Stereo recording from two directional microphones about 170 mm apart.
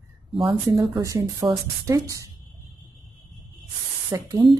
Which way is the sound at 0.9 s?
20° right (ahead or behind).